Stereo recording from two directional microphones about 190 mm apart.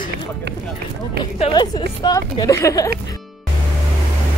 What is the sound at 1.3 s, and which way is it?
Speech, 30° left (ahead or behind).